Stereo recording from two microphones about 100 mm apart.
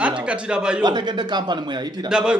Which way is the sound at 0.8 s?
45° right (ahead or behind).